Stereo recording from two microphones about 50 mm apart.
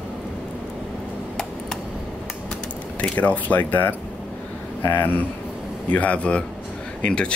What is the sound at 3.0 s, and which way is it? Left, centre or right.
Speech, left.